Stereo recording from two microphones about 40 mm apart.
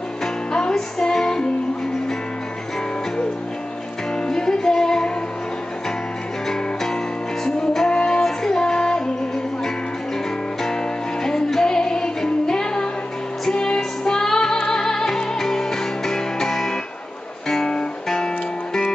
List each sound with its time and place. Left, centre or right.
0.2 s music: centre
4.3 s music: centre
6.4 s music: centre
11.2 s music: centre